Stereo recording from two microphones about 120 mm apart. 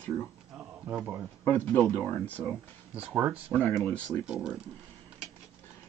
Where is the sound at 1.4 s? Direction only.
15° left (ahead or behind).